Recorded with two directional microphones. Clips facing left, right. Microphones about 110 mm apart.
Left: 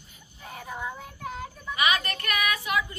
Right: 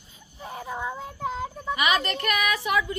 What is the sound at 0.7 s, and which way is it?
Child singing, 25° right (ahead or behind).